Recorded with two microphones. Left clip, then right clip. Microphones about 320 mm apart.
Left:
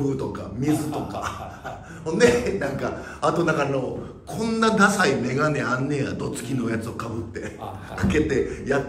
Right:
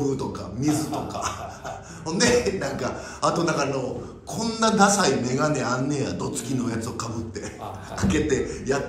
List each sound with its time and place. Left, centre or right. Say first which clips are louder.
0.3 s a man's voice: left 1 dB; centre